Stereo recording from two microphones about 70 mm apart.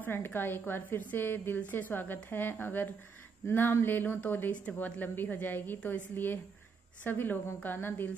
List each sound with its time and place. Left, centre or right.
0.0 s a woman's voice: left